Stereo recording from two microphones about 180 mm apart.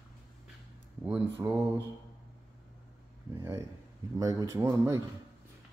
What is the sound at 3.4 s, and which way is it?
A man's voice, 15° right (ahead or behind).